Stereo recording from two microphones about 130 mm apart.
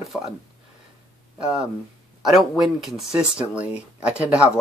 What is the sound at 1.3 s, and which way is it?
Speech, 5° right (ahead or behind).